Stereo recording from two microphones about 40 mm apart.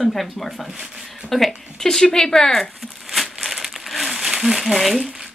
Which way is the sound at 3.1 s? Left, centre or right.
Centre.